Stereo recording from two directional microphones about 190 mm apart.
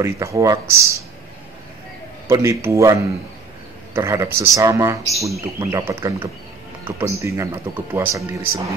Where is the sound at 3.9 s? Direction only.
15° right (ahead or behind).